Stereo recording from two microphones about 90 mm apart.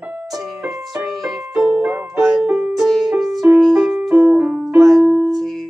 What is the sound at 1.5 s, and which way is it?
Keyboard, 10° right (ahead or behind).